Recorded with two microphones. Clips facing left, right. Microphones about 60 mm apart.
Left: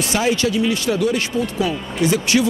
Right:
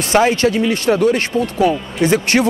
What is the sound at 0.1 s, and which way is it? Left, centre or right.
Speech, right.